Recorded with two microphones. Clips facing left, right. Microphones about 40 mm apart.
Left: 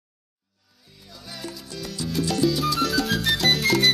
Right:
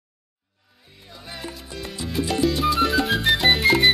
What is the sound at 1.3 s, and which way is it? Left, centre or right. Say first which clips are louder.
Salsa music: right 1 dB; right.